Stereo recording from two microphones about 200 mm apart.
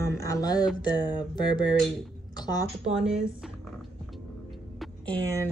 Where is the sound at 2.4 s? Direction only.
20° left (ahead or behind).